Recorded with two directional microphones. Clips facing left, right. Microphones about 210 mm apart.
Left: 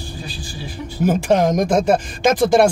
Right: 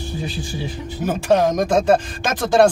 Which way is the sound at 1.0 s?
15° left (ahead or behind).